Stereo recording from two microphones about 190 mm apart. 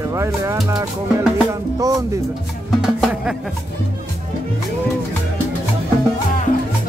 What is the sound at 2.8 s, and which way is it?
Music, 5° right (ahead or behind).